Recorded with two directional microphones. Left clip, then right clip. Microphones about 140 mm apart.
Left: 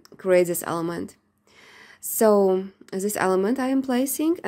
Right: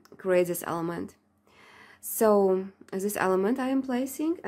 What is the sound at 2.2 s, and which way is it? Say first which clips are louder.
Speech: left 4 dB; 25° left (ahead or behind).